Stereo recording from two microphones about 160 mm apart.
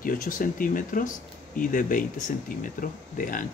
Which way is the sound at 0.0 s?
60° left (ahead or behind).